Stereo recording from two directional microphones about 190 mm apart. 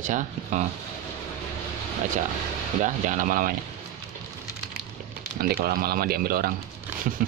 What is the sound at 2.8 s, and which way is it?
Speech, 45° right (ahead or behind).